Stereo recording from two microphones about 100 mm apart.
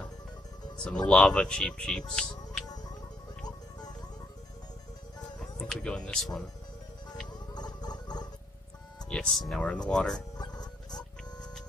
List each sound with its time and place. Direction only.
0.8 s speech: 10° left (ahead or behind)
5.4 s speech: 5° left (ahead or behind)
7.5 s gargling: 45° left (ahead or behind)
9.1 s speech: 5° left (ahead or behind)
10.3 s music: 45° left (ahead or behind)